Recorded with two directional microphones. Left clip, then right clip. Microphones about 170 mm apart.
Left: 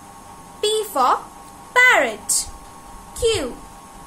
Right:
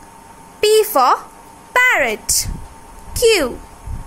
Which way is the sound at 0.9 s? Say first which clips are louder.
Right 4 dB; 55° right (ahead or behind).